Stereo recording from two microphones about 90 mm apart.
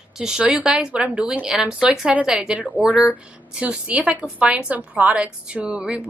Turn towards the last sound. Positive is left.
turn(degrees=-15)  # may be behind; listen again after turning